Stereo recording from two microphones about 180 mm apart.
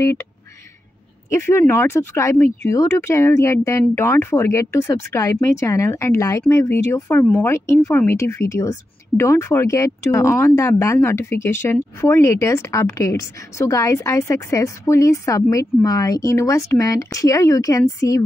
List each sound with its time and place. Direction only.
1.3 s speech: 15° left (ahead or behind)